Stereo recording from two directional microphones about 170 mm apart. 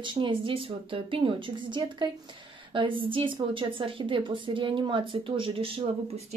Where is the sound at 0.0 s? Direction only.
30° right (ahead or behind).